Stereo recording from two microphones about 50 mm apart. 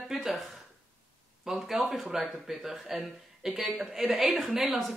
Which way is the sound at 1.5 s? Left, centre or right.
Centre.